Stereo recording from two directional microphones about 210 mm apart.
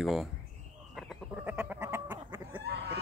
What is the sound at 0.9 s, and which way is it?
Frog, centre (ahead or behind).